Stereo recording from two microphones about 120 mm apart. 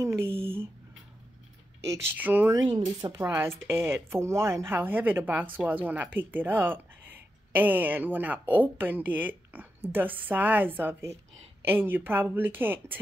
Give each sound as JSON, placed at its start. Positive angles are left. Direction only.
{"t": 1.9, "sound": "speech", "side_deg": -15}
{"t": 2.5, "sound": "speech", "side_deg": -35}
{"t": 3.2, "sound": "speech", "side_deg": -25}